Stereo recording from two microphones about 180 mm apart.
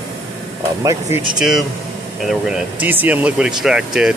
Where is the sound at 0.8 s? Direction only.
20° right (ahead or behind).